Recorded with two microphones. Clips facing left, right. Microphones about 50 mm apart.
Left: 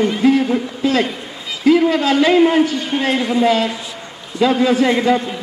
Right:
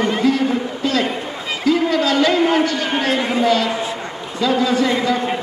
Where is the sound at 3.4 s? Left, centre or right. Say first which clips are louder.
Left 1 dB; centre.